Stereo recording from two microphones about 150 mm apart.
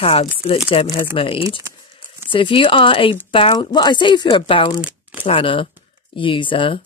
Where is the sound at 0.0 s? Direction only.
40° left (ahead or behind).